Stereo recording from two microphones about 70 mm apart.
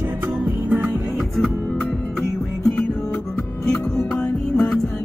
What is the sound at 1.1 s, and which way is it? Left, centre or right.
Music, centre.